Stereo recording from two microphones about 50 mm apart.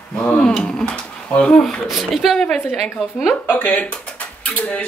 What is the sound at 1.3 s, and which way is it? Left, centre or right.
Speech, centre.